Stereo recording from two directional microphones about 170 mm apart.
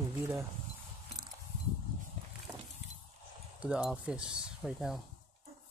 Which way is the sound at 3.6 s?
5° right (ahead or behind).